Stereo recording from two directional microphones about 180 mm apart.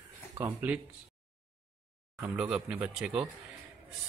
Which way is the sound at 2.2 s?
5° right (ahead or behind).